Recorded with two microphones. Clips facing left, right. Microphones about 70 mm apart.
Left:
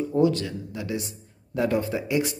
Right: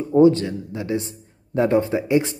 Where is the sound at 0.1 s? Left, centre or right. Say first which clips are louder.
Right 10 dB; right.